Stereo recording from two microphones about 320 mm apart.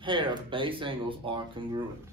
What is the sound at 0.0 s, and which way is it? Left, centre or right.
Speech, centre.